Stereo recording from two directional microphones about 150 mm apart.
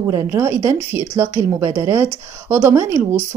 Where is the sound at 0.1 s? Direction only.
25° right (ahead or behind).